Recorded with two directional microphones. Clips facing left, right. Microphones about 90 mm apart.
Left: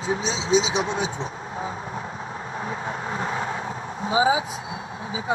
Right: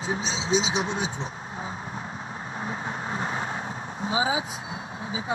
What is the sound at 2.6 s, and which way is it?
Vehicle, 30° right (ahead or behind).